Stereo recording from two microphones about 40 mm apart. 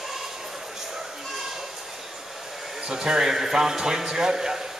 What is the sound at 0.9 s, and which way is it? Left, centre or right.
Children playing, centre.